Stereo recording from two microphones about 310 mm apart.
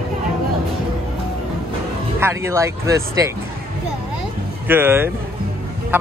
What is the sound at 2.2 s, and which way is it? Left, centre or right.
Speech, centre.